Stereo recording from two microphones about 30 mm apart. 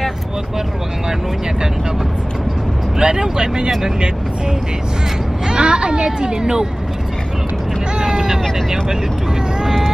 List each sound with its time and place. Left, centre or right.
3.0 s speech: right
5.5 s speech: right
8.0 s vehicle: right